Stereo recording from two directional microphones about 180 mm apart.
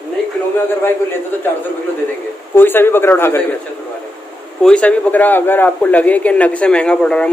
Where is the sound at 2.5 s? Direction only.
10° left (ahead or behind).